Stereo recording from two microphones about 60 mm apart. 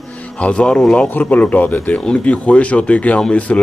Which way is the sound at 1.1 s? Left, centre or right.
Left.